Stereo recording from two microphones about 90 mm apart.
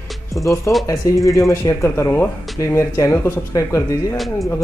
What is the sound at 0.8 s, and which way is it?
Speech, 40° left (ahead or behind).